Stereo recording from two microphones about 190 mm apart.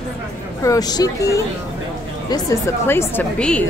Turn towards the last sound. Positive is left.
turn(degrees=5)  # may be behind; listen again after turning